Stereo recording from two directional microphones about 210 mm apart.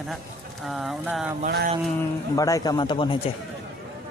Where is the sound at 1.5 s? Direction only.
50° right (ahead or behind).